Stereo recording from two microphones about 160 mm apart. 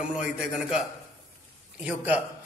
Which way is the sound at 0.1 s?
5° right (ahead or behind).